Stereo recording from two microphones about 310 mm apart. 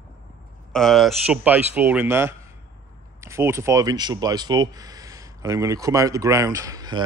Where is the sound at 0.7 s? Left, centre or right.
Centre.